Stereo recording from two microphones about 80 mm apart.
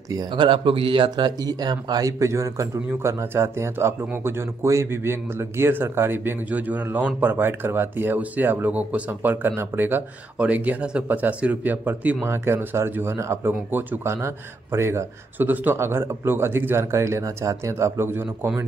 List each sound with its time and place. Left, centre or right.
0.3 s a man's voice: right